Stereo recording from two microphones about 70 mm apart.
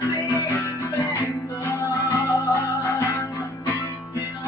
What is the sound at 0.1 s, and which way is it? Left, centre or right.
Music, left.